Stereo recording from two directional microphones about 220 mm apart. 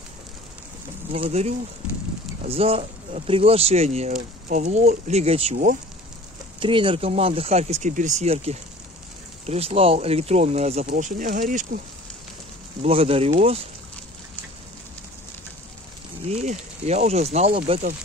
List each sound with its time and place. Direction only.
1.1 s speech: 25° right (ahead or behind)
6.6 s speech: 25° right (ahead or behind); by 11.8 s 40° right (ahead or behind)
12.8 s speech: 25° right (ahead or behind)
16.3 s speech: 30° right (ahead or behind)